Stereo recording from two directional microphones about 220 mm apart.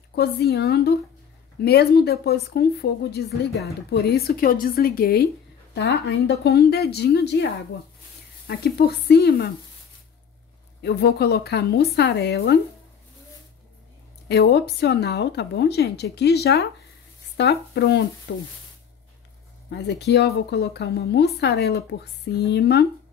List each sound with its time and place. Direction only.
0.1 s a woman's voice: 45° left (ahead or behind)
8.5 s a woman's voice: 45° left (ahead or behind)
10.8 s a woman's voice: 50° left (ahead or behind)
14.3 s a woman's voice: 50° left (ahead or behind)
19.7 s a woman's voice: 50° left (ahead or behind)